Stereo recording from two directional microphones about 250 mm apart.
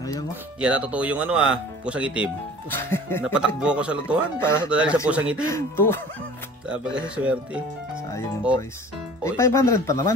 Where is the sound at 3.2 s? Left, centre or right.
Centre.